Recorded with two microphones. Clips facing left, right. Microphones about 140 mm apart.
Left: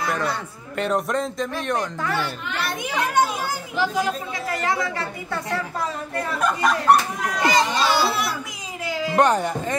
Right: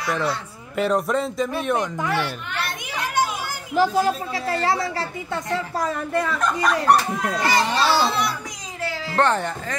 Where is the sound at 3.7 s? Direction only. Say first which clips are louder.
Right 5 dB; 40° right (ahead or behind).